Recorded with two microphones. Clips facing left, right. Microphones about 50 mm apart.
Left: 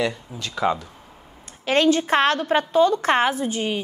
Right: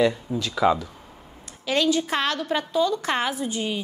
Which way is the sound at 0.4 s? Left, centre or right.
Left.